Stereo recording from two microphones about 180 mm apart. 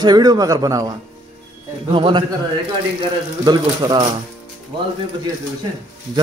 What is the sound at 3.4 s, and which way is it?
Speech, 25° right (ahead or behind).